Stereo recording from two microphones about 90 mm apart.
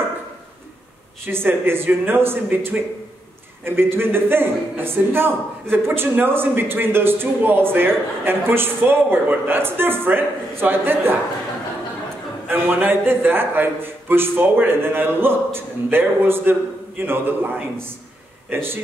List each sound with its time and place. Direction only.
1.2 s a man's voice: 25° right (ahead or behind)
12.4 s a man's voice: 25° right (ahead or behind)